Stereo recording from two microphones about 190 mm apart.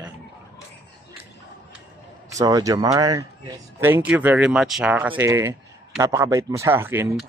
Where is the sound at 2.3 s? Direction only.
20° right (ahead or behind).